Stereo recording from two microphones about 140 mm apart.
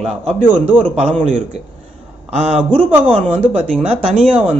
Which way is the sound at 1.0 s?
45° right (ahead or behind).